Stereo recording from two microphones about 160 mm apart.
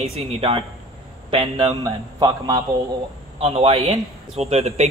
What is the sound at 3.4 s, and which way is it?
A man's voice, 40° right (ahead or behind).